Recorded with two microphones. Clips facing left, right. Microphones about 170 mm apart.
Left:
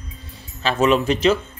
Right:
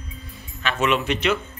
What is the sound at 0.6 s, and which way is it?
Speech, 35° left (ahead or behind).